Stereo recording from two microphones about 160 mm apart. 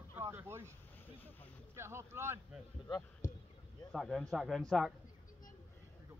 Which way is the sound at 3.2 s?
55° left (ahead or behind).